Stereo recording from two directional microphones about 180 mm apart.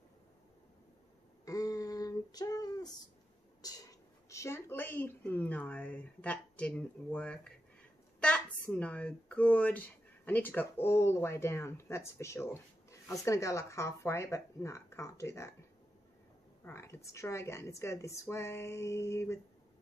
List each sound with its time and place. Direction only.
1.4 s female singing: 20° left (ahead or behind)
3.6 s a sound: 20° left (ahead or behind)
8.2 s a woman's voice: 5° left (ahead or behind)
16.6 s a woman's voice: 15° left (ahead or behind)